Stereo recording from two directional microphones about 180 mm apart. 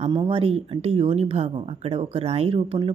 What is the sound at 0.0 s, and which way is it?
Speech, 25° right (ahead or behind).